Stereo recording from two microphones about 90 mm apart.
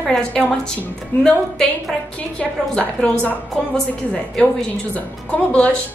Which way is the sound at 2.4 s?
15° left (ahead or behind).